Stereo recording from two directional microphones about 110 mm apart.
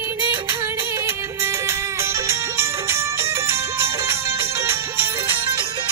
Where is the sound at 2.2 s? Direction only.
25° right (ahead or behind).